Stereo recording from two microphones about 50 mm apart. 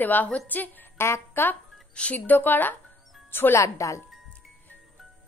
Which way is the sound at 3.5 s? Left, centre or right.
Left.